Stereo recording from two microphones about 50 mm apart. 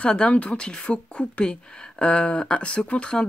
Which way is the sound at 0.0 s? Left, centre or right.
Left.